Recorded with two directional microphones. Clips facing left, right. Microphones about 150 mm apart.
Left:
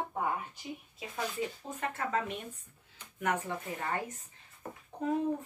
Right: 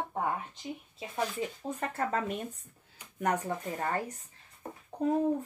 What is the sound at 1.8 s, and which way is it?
Speech, 40° right (ahead or behind).